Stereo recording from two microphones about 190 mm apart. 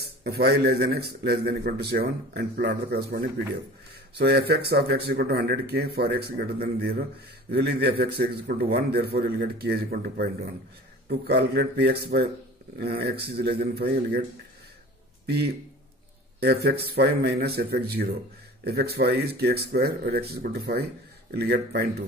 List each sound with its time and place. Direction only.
0.0 s a man's voice: 55° right (ahead or behind)
15.2 s a man's voice: 60° right (ahead or behind)